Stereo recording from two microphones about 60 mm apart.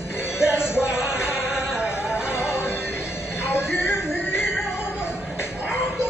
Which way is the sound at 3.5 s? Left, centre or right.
Left.